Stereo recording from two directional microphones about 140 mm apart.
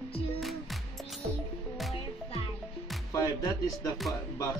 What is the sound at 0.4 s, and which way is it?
Music, centre (ahead or behind).